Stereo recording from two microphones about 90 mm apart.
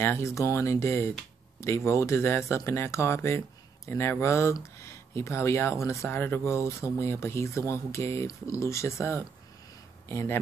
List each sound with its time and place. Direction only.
0.0 s speech: 30° left (ahead or behind)